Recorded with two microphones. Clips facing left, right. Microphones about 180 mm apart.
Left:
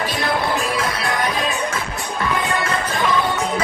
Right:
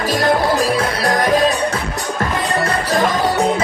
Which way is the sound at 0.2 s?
40° right (ahead or behind).